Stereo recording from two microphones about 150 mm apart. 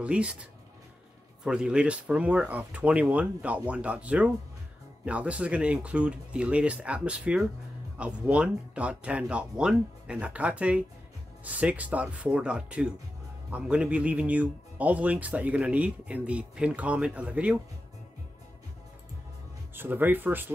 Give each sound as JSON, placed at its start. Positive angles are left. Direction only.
{"t": 0.0, "sound": "speech", "side_deg": -10}
{"t": 19.7, "sound": "speech", "side_deg": -15}